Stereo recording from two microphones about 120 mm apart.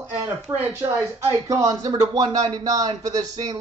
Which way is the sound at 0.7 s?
20° right (ahead or behind).